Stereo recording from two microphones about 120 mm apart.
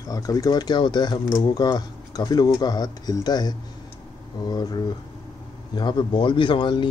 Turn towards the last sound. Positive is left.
turn(degrees=40)  # may be behind; listen again after turning